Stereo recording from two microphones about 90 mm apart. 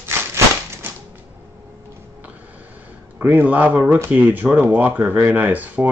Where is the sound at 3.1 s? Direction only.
20° right (ahead or behind).